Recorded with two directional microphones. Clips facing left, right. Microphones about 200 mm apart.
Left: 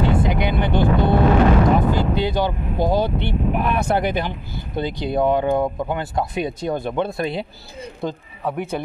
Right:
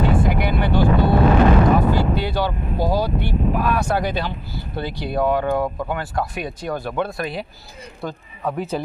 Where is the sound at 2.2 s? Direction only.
20° left (ahead or behind).